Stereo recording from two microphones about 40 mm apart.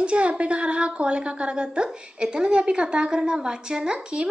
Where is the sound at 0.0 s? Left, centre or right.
Right.